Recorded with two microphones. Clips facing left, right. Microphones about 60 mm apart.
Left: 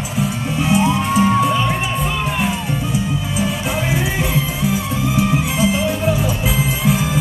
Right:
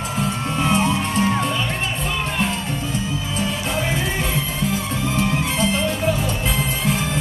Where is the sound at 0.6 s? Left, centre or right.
Centre.